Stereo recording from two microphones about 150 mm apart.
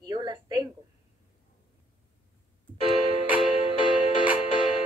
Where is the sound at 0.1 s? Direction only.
30° right (ahead or behind).